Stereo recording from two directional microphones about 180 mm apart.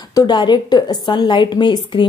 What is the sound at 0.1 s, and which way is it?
A woman's voice, 20° left (ahead or behind).